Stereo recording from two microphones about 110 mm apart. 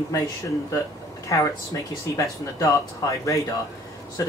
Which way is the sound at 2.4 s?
30° left (ahead or behind).